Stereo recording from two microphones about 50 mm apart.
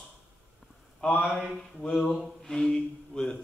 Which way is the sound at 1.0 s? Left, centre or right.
Left.